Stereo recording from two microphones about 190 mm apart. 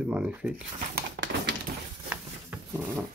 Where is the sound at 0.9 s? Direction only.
65° right (ahead or behind).